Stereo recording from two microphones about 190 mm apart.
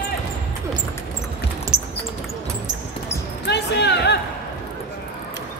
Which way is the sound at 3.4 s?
65° left (ahead or behind).